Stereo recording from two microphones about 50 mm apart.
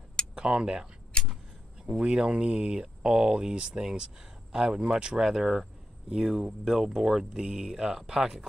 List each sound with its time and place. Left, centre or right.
0.3 s speech: centre
1.1 s a sound: centre
2.0 s speech: centre